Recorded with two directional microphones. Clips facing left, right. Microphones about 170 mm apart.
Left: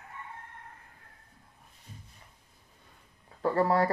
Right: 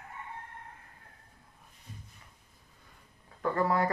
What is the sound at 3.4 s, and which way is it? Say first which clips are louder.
Speech: left 3 dB; 30° left (ahead or behind).